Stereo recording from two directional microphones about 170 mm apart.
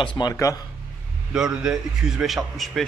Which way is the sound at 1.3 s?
5° right (ahead or behind).